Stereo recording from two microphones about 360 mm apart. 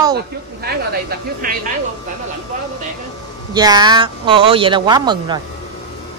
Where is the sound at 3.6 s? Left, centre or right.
Centre.